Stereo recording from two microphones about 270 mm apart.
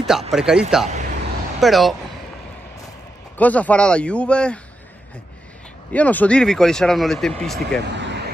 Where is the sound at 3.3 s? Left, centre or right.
Centre.